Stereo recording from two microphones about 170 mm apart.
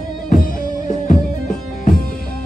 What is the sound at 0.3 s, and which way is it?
Music, 50° left (ahead or behind).